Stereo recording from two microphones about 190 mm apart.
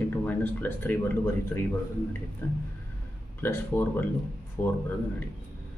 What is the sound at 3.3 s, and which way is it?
Speech, 10° left (ahead or behind).